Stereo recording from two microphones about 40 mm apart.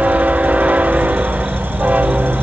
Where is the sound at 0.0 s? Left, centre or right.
Right.